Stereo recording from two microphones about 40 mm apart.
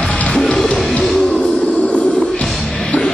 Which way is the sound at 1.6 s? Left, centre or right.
Left.